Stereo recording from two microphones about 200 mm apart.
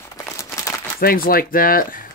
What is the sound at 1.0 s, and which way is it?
Speech, 50° left (ahead or behind).